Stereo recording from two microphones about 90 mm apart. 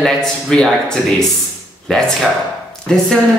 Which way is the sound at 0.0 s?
5° left (ahead or behind).